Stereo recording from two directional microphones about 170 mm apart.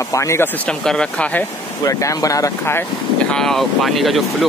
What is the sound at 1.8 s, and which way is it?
Speech, 20° left (ahead or behind).